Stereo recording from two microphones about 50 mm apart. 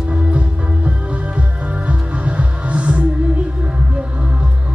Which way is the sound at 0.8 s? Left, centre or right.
Right.